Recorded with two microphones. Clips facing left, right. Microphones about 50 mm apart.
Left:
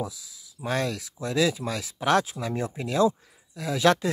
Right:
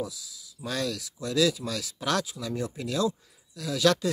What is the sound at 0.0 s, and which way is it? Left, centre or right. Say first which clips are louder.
Speech: left 1 dB; left.